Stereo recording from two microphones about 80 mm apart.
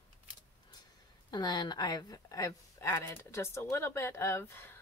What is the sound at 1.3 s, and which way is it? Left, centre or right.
Speech, left.